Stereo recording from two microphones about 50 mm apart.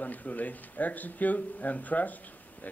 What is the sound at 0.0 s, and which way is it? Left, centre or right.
Speech, left.